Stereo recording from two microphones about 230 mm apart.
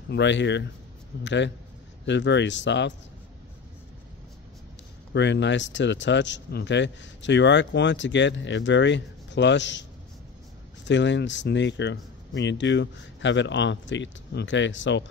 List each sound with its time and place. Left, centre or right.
0.1 s speech: left
5.1 s speech: left
10.9 s speech: left